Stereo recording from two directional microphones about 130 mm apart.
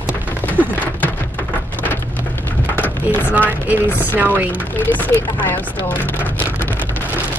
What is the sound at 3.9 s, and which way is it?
Speech, 15° left (ahead or behind).